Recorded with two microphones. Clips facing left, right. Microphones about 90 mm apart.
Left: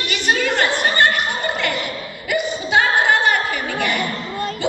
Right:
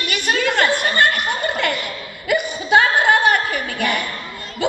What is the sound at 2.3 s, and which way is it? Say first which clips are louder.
Chuckle: right 3 dB; 55° right (ahead or behind).